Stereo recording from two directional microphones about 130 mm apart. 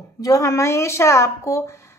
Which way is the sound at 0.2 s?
25° left (ahead or behind).